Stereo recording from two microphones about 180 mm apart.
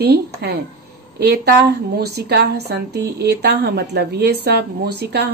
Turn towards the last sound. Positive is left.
turn(degrees=-65)  # may be behind; listen again after turning